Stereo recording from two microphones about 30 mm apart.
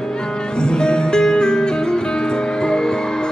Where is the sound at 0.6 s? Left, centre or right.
Left.